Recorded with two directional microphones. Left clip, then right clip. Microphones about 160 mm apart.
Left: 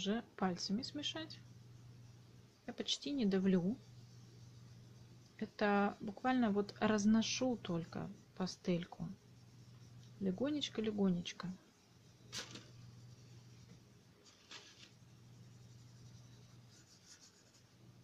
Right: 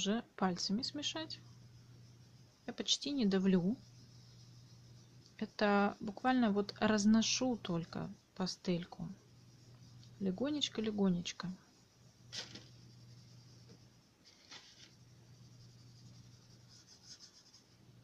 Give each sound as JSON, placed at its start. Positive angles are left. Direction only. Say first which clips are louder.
{"t": 0.0, "sound": "speech", "louder": "right 3 dB", "side_deg": -15}
{"t": 2.6, "sound": "speech", "louder": "right 4 dB", "side_deg": -15}
{"t": 5.4, "sound": "speech", "louder": "right 3 dB", "side_deg": -15}
{"t": 10.2, "sound": "speech", "louder": "right 2 dB", "side_deg": -10}